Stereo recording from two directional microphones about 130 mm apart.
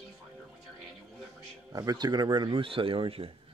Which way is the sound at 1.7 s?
30° right (ahead or behind).